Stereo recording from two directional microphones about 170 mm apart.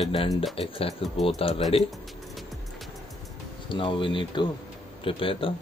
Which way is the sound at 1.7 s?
35° left (ahead or behind).